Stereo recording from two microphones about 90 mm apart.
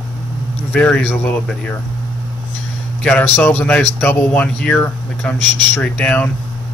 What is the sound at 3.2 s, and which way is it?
A man's voice, 25° left (ahead or behind).